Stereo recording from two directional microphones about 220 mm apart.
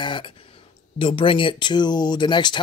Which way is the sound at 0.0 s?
20° left (ahead or behind).